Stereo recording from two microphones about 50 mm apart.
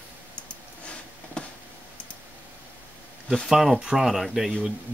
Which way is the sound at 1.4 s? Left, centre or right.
Left.